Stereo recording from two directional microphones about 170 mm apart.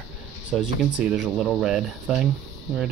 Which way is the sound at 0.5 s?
5° right (ahead or behind).